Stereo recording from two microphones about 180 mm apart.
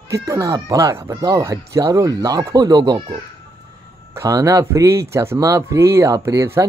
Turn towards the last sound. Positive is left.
turn(degrees=-15)  # may be behind; listen again after turning